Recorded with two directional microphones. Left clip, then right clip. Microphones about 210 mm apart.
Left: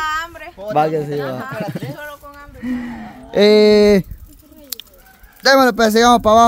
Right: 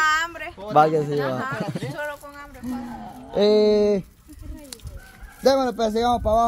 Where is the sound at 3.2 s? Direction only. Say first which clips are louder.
Left 7 dB; 40° left (ahead or behind).